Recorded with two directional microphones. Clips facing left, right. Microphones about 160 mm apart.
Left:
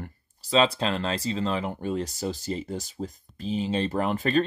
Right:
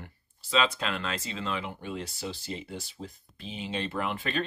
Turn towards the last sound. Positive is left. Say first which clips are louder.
# left 7 dB
turn(degrees=40)  # may be behind; listen again after turning